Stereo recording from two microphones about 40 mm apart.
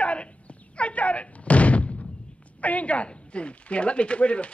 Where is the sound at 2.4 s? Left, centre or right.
Left.